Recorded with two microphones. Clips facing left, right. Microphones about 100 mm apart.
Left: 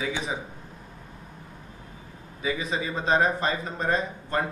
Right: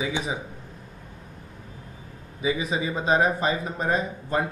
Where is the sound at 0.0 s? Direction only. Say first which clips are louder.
Right 2 dB; 15° right (ahead or behind).